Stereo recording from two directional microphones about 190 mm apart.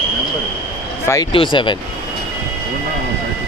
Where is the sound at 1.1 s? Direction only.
15° left (ahead or behind).